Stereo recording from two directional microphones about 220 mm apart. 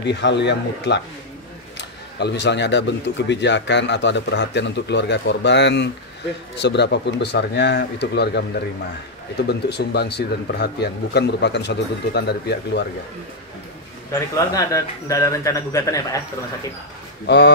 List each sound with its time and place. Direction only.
0.0 s speech: 50° left (ahead or behind)
14.1 s a man's voice: 15° left (ahead or behind)